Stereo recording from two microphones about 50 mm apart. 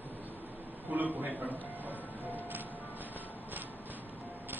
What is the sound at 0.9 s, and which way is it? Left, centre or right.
Speech, right.